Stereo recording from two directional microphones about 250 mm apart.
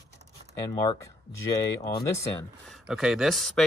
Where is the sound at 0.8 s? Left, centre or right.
Centre.